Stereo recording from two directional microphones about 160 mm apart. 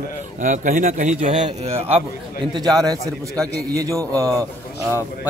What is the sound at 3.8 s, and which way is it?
Speech, 20° right (ahead or behind).